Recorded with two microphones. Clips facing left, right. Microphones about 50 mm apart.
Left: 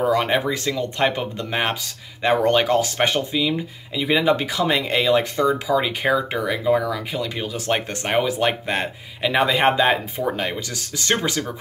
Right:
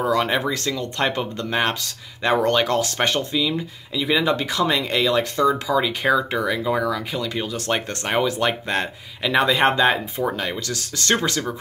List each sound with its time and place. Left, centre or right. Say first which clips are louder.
0.1 s speech: left 1 dB; centre